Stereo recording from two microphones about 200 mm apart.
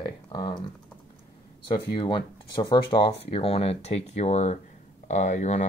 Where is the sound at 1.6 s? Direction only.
25° left (ahead or behind).